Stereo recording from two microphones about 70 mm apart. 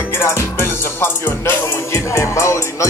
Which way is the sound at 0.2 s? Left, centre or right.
Left.